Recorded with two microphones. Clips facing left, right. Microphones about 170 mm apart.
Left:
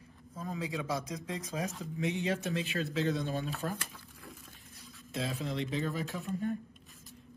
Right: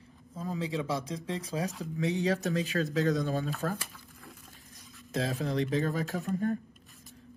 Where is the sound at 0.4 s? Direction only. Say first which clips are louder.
Right 4 dB; 30° right (ahead or behind).